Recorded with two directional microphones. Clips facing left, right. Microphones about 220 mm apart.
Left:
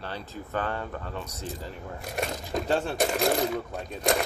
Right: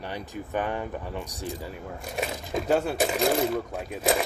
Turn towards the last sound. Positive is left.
turn(degrees=-5)  # may be behind; listen again after turning